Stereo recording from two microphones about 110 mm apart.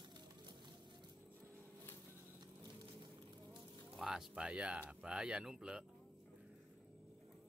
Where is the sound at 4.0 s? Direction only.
5° right (ahead or behind).